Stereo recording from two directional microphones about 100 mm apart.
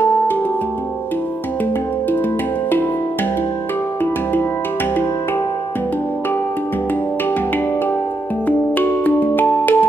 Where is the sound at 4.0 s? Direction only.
20° left (ahead or behind).